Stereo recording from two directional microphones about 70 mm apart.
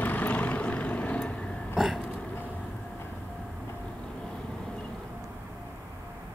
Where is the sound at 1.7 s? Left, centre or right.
Centre.